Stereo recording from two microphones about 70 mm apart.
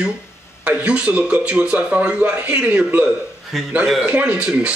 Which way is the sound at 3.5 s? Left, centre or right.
Centre.